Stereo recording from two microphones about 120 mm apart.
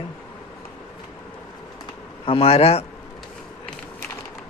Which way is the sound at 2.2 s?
50° left (ahead or behind).